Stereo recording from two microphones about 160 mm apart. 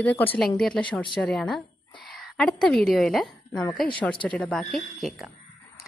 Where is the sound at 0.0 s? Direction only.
10° left (ahead or behind).